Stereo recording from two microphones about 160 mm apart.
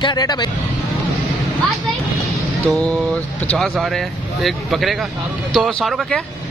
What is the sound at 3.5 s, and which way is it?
Speech, centre (ahead or behind).